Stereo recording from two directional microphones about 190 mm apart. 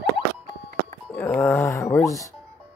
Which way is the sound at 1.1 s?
5° left (ahead or behind).